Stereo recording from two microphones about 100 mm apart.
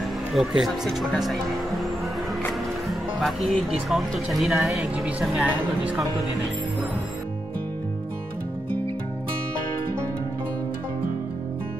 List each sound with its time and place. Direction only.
0.3 s speech: centre (ahead or behind)
2.9 s speech: centre (ahead or behind)